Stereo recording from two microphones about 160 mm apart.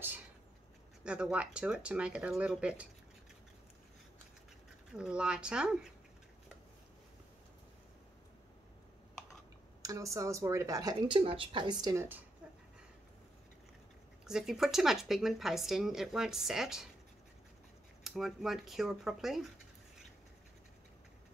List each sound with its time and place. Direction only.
1.0 s speech: 5° right (ahead or behind)
4.9 s a woman's voice: 5° right (ahead or behind)
9.8 s speech: 20° right (ahead or behind)
11.8 s speech: 15° right (ahead or behind)
14.2 s a woman's voice: 5° right (ahead or behind)
18.0 s a woman's voice: centre (ahead or behind)